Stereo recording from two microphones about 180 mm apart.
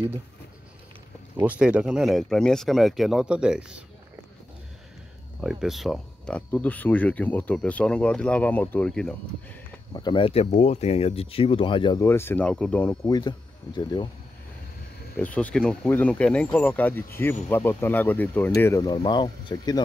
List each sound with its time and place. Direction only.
1.3 s speech: 10° right (ahead or behind)
5.4 s speech: 5° right (ahead or behind)
9.9 s speech: 25° left (ahead or behind)
15.1 s speech: 10° left (ahead or behind)